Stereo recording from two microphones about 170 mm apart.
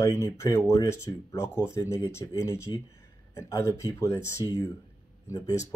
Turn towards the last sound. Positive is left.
turn(degrees=20)  # may be behind; listen again after turning